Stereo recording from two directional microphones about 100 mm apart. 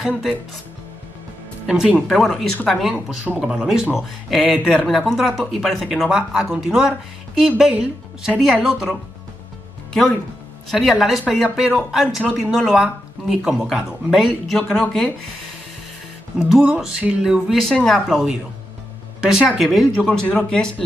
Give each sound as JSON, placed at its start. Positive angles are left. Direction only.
{"t": 1.7, "sound": "speech", "side_deg": -5}
{"t": 2.9, "sound": "speech", "side_deg": -5}
{"t": 10.7, "sound": "speech", "side_deg": 0}
{"t": 16.3, "sound": "speech", "side_deg": -5}
{"t": 19.2, "sound": "speech", "side_deg": -5}
{"t": 20.1, "sound": "speech", "side_deg": 10}